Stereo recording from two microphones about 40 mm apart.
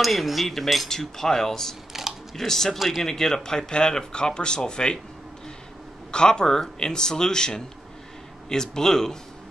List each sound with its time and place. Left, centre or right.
0.0 s cutlery: centre
0.8 s speech: centre
6.1 s speech: centre